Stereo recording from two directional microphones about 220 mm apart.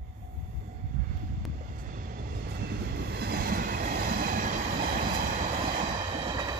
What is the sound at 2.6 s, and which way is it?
Train, 50° right (ahead or behind).